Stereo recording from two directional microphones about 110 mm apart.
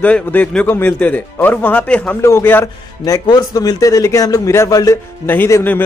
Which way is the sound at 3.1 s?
35° left (ahead or behind).